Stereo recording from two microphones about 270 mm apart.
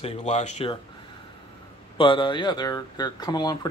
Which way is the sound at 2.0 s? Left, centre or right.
Centre.